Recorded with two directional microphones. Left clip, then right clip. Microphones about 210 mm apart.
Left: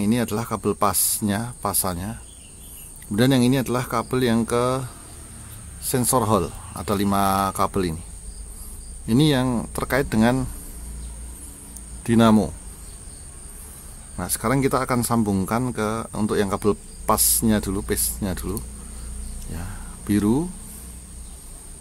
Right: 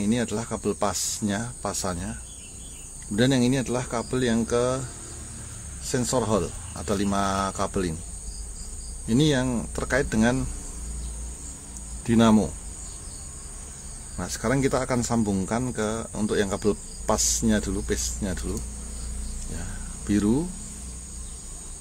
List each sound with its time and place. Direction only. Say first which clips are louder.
0.0 s speech: left 3 dB; 25° left (ahead or behind)
3.2 s speech: left 3 dB; 25° left (ahead or behind)
5.9 s speech: left 4 dB; 25° left (ahead or behind)
9.0 s speech: left 3 dB; 25° left (ahead or behind)
12.0 s speech: left 3 dB; 20° left (ahead or behind)
14.1 s speech: left 3 dB; 20° left (ahead or behind)